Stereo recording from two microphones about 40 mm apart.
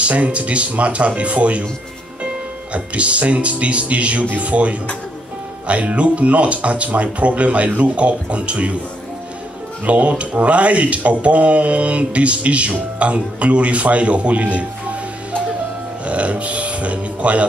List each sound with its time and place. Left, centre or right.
0.0 s speech: right
2.7 s speech: right
9.8 s speech: right
16.1 s speech: right